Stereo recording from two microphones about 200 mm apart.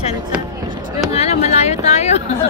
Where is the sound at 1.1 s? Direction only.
30° left (ahead or behind).